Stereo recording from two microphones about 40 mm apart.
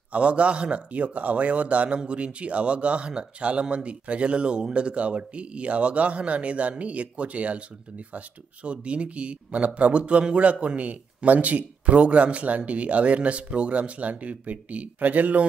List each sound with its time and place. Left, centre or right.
0.1 s a man's voice: right
8.6 s a man's voice: right